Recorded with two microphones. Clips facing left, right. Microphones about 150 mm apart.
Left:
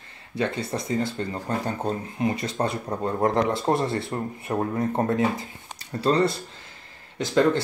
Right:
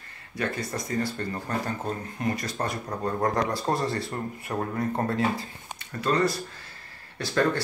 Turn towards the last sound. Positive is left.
turn(degrees=20)  # may be behind; listen again after turning